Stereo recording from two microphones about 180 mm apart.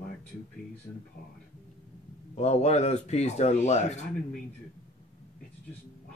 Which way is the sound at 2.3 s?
40° left (ahead or behind).